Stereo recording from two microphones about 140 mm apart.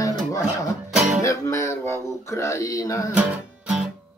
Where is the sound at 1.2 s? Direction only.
20° left (ahead or behind).